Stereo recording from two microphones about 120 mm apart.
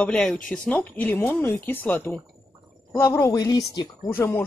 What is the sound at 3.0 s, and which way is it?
Speech, 30° left (ahead or behind).